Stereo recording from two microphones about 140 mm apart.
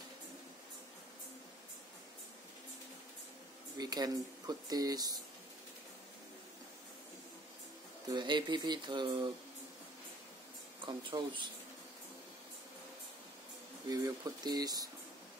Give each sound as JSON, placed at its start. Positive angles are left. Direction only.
{"t": 3.7, "sound": "speech", "side_deg": -30}
{"t": 8.1, "sound": "speech", "side_deg": -30}
{"t": 10.9, "sound": "speech", "side_deg": -35}
{"t": 13.8, "sound": "speech", "side_deg": -25}